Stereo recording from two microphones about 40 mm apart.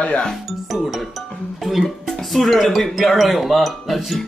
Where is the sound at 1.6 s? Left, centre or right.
Centre.